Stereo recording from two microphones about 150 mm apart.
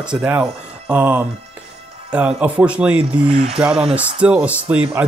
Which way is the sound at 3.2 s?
40° right (ahead or behind).